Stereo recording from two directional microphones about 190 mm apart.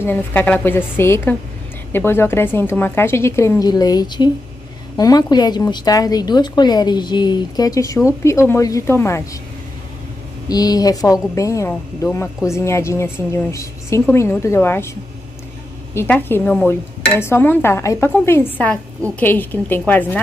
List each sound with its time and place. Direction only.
0.0 s a woman's voice: 10° left (ahead or behind)
10.5 s speech: 20° left (ahead or behind)
15.9 s speech: 10° left (ahead or behind)